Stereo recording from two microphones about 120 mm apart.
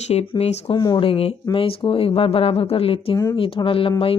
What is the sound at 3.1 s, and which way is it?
Speech, 40° left (ahead or behind).